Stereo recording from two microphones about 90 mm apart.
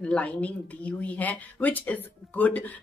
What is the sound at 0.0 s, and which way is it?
Speech, 15° left (ahead or behind).